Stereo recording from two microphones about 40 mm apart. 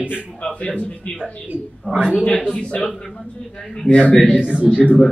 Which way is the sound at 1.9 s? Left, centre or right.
Right.